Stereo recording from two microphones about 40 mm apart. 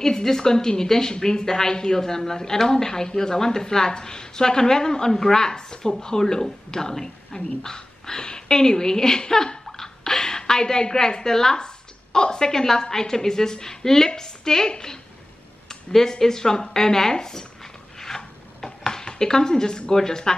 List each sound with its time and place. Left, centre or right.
0.0 s a woman's voice: centre
17.9 s a sound: centre
19.9 s a woman's voice: centre